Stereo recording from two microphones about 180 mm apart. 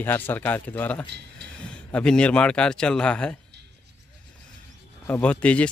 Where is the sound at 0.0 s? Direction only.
10° left (ahead or behind).